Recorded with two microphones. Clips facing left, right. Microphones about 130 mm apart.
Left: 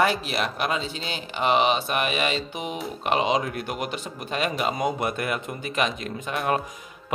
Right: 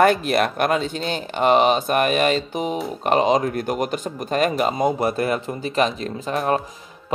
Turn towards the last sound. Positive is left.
turn(degrees=-30)  # may be behind; listen again after turning